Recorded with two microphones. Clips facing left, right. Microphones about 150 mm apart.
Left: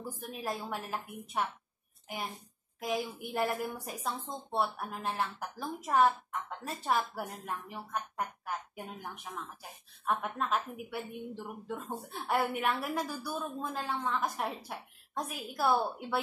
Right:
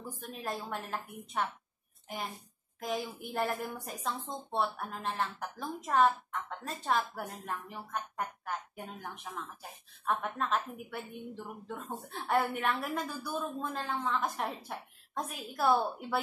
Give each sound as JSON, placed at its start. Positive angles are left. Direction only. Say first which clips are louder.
{"t": 0.2, "sound": "a woman's voice", "louder": "even", "side_deg": 5}
{"t": 3.2, "sound": "a woman's voice", "louder": "left 1 dB", "side_deg": 0}